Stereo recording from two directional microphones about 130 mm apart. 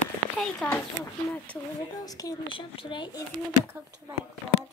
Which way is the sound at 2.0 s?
30° left (ahead or behind).